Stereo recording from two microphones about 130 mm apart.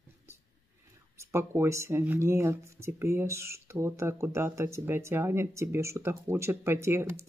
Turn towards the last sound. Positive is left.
turn(degrees=-20)  # may be behind; listen again after turning